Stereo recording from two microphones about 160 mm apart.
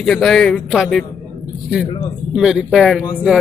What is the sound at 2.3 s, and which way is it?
Speech, 5° right (ahead or behind).